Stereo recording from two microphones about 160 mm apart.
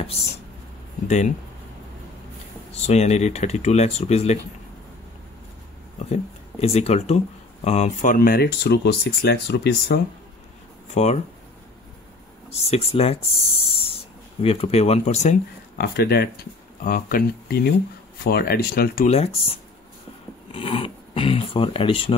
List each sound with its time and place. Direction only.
1.0 s speech: 45° left (ahead or behind)
2.7 s speech: 45° left (ahead or behind)
6.6 s speech: 40° left (ahead or behind); by 9.9 s 90° left
11.0 s speech: 40° left (ahead or behind)
12.4 s speech: 40° left (ahead or behind)
15.8 s speech: 85° left
19.0 s speech: 40° left (ahead or behind)